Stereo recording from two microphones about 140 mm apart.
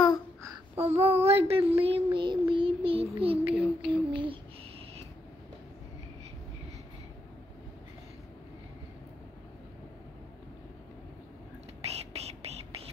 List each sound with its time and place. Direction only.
0.7 s child singing: 50° right (ahead or behind)
3.4 s a sound: 10° right (ahead or behind)
3.9 s child singing: 40° right (ahead or behind)
11.8 s whispering: 45° right (ahead or behind)